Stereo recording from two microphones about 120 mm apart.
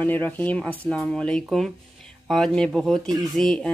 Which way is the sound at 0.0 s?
15° left (ahead or behind).